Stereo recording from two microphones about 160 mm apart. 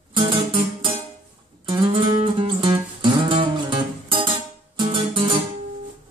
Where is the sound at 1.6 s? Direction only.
30° right (ahead or behind).